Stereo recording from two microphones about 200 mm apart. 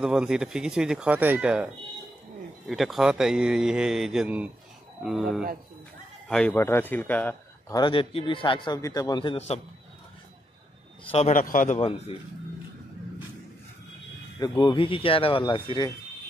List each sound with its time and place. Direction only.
0.0 s a man's voice: 5° right (ahead or behind)
7.7 s a man's voice: 25° left (ahead or behind)
11.1 s a man's voice: 35° left (ahead or behind)
14.4 s a man's voice: 20° left (ahead or behind)